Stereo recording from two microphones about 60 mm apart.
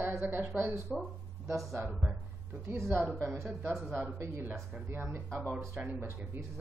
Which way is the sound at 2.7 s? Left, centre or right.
Right.